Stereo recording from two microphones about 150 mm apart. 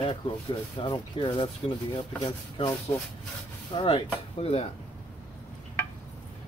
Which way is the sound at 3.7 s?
35° left (ahead or behind).